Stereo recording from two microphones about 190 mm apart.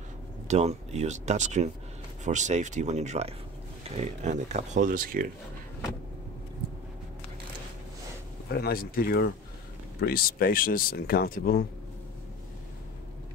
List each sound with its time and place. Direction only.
0.5 s speech: 35° right (ahead or behind)
8.5 s speech: 55° left (ahead or behind)